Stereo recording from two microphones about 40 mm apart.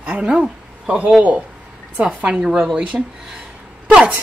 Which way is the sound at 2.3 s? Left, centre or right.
Centre.